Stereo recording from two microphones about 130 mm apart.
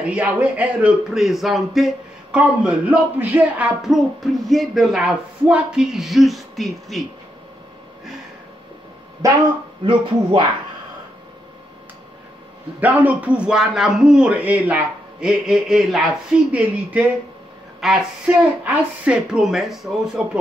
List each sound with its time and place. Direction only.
0.0 s speech: 10° right (ahead or behind)
9.2 s speech: 25° right (ahead or behind)
9.8 s speech: 35° right (ahead or behind)
12.8 s a man's voice: 10° right (ahead or behind)
17.7 s speech: 5° right (ahead or behind)